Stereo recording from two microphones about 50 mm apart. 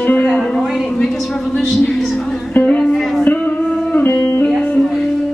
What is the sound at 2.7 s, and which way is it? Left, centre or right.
Music, centre.